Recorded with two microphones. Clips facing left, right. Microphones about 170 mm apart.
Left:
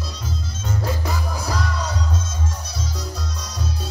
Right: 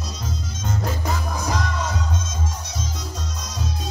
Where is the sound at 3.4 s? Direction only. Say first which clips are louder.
Even; 35° left (ahead or behind).